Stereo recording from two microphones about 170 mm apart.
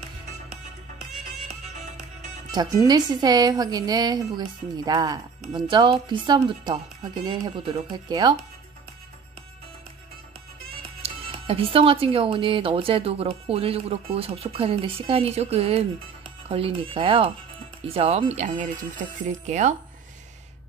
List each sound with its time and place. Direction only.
0.9 s music: 40° right (ahead or behind)
2.5 s speech: 25° right (ahead or behind)
11.0 s speech: 35° right (ahead or behind)